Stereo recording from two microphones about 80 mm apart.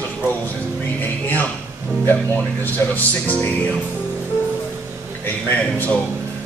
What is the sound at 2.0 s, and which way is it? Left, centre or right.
Speech, left.